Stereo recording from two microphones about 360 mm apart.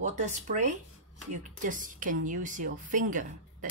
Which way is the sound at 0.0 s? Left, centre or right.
Centre.